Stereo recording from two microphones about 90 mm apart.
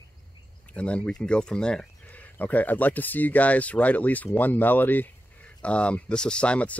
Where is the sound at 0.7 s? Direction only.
15° left (ahead or behind).